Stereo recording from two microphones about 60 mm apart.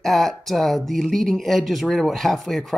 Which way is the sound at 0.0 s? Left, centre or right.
Centre.